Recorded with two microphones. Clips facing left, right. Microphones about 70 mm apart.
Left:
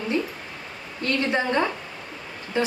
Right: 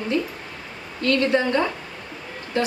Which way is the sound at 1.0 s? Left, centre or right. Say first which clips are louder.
Right 4 dB; left.